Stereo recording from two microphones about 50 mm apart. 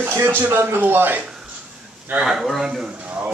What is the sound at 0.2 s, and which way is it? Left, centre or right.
Speech, right.